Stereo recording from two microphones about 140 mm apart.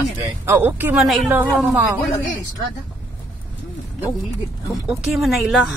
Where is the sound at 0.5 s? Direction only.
15° right (ahead or behind).